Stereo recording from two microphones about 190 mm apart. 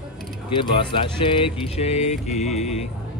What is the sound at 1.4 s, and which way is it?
Mantra, 35° left (ahead or behind).